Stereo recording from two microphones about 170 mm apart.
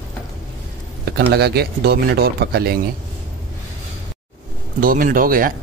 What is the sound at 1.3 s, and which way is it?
Speech, 70° right (ahead or behind).